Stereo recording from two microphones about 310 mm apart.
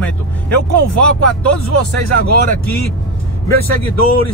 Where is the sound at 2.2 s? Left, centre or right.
Right.